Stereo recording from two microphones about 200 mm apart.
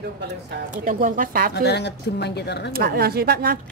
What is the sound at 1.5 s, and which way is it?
Speech, 55° left (ahead or behind).